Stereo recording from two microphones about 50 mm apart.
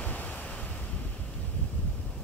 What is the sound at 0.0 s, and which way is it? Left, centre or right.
Waves, left.